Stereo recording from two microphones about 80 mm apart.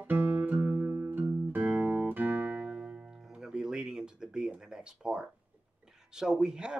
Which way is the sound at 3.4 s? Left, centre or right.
Centre.